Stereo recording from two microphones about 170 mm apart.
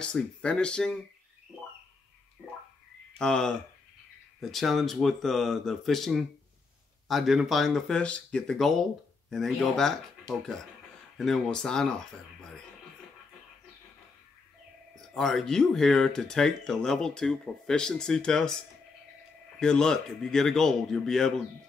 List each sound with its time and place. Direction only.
0.0 s speech: 5° left (ahead or behind)
3.2 s speech: 5° left (ahead or behind)
15.0 s speech: centre (ahead or behind)
19.6 s speech: 5° left (ahead or behind)